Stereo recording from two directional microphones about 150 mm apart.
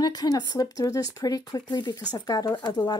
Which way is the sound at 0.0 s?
25° left (ahead or behind).